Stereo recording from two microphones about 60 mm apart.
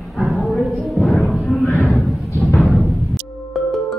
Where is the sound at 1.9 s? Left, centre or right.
Centre.